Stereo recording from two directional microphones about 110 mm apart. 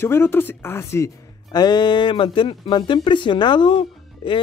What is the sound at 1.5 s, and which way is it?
Speech, 40° left (ahead or behind).